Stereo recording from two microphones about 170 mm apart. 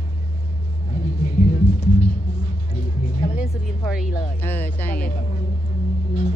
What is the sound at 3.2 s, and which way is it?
Vehicle, 60° left (ahead or behind).